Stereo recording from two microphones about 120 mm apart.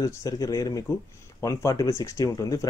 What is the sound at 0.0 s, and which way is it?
Speech, 30° left (ahead or behind).